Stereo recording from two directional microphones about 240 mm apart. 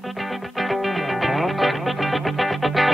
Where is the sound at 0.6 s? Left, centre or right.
Centre.